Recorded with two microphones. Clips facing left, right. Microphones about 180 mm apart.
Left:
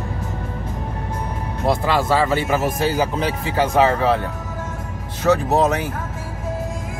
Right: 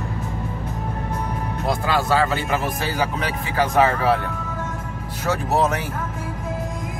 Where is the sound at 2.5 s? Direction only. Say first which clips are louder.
Left 4 dB; 25° left (ahead or behind).